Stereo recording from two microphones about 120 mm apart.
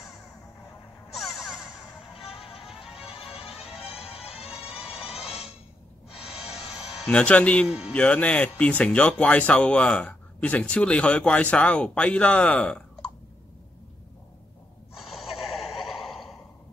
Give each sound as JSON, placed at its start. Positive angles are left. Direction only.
{"t": 1.1, "sound": "a sound", "side_deg": 0}
{"t": 2.1, "sound": "music", "side_deg": 50}
{"t": 2.7, "sound": "music", "side_deg": -5}
{"t": 3.5, "sound": "music", "side_deg": 55}
{"t": 4.5, "sound": "music", "side_deg": -5}
{"t": 6.5, "sound": "music", "side_deg": 60}
{"t": 7.1, "sound": "speech", "side_deg": 10}
{"t": 7.6, "sound": "a man's voice", "side_deg": -5}
{"t": 7.9, "sound": "speech", "side_deg": 10}
{"t": 15.8, "sound": "a sound", "side_deg": 0}